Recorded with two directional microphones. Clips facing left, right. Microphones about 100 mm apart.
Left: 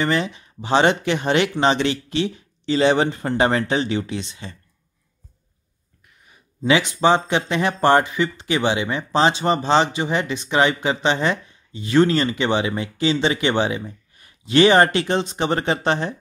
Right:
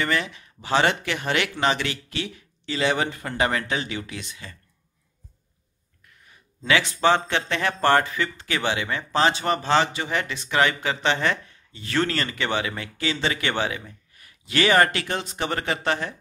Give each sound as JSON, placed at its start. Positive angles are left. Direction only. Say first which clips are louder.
{"t": 0.0, "sound": "speech", "louder": "left 4 dB", "side_deg": 25}
{"t": 6.2, "sound": "speech", "louder": "left 6 dB", "side_deg": 20}